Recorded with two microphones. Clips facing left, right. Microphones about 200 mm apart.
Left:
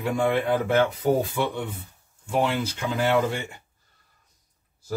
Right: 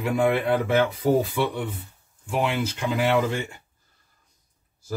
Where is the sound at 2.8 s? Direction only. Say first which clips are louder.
Right 1 dB; centre (ahead or behind).